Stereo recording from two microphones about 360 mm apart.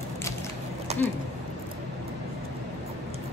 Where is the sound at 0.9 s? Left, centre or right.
Centre.